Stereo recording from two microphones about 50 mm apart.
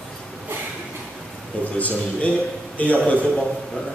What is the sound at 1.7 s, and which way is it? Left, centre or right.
A man's voice, left.